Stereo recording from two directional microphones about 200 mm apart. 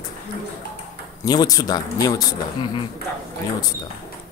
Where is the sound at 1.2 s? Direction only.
20° left (ahead or behind).